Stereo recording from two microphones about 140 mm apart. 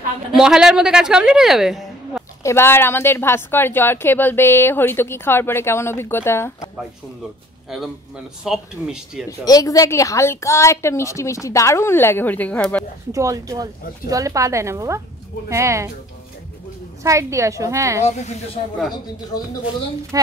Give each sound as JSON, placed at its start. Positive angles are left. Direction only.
{"t": 0.3, "sound": "a woman's voice", "side_deg": -5}
{"t": 2.4, "sound": "a woman's voice", "side_deg": 15}
{"t": 8.5, "sound": "a woman's voice", "side_deg": -5}
{"t": 9.4, "sound": "a woman's voice", "side_deg": 25}
{"t": 13.1, "sound": "a woman's voice", "side_deg": -25}
{"t": 17.0, "sound": "a woman's voice", "side_deg": -20}
{"t": 18.0, "sound": "speech", "side_deg": 55}